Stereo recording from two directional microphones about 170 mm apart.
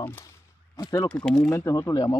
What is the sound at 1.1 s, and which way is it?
Speech, 5° left (ahead or behind).